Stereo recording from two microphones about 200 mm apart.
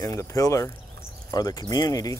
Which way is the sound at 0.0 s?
15° left (ahead or behind).